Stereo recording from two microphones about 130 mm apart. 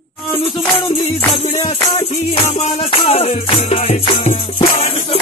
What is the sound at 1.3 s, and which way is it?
Music, 55° left (ahead or behind).